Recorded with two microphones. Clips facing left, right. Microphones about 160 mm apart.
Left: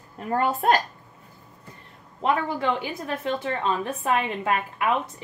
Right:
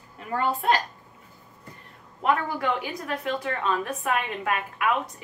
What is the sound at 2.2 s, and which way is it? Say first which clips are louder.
A woman's voice: left 1 dB; 25° left (ahead or behind).